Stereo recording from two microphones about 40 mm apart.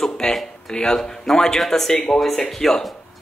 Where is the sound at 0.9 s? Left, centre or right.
Centre.